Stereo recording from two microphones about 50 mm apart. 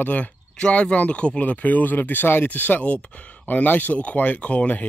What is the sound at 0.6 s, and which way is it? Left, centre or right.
Speech, centre.